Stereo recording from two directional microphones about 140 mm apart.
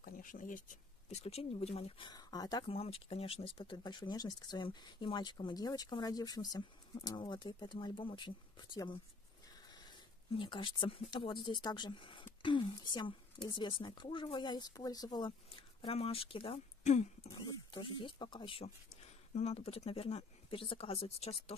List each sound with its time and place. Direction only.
0.0 s speech: 80° left
1.2 s speech: 45° left (ahead or behind); by 2.7 s 30° left (ahead or behind)
2.7 s speech: 45° left (ahead or behind)
15.8 s speech: 45° left (ahead or behind)
16.8 s speech: 55° left (ahead or behind)
17.4 s speech: 35° left (ahead or behind)